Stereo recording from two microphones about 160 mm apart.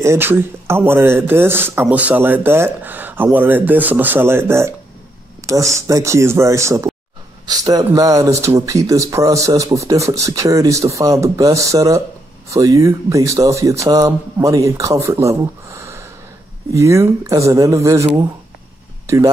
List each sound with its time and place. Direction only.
0.0 s speech: 15° right (ahead or behind)
19.0 s speech: 20° right (ahead or behind)